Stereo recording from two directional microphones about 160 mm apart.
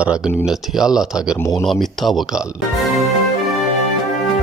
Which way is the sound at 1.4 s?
20° left (ahead or behind).